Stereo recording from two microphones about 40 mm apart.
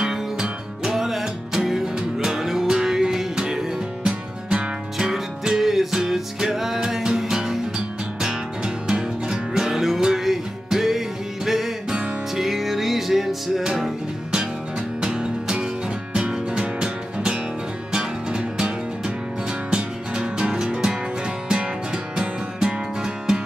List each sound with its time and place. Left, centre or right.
0.0 s music: centre
4.9 s music: centre
15.0 s music: centre